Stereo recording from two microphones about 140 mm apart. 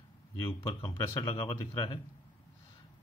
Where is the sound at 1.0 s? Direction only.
20° left (ahead or behind).